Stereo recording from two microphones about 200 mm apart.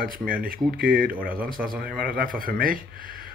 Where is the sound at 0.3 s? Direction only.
45° right (ahead or behind).